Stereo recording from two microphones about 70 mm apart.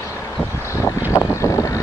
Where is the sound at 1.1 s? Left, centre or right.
Left.